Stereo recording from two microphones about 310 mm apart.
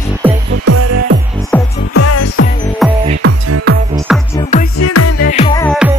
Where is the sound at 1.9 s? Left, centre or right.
Left.